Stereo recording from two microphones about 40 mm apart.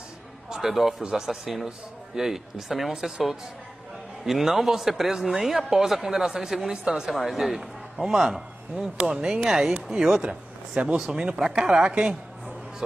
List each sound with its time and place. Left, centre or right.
0.5 s a man's voice: centre
7.1 s a man's voice: centre; by 12.2 s right